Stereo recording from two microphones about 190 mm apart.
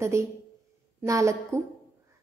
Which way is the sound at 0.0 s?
15° right (ahead or behind).